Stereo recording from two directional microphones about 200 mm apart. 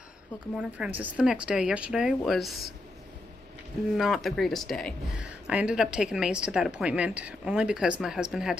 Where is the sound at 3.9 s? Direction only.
Centre (ahead or behind).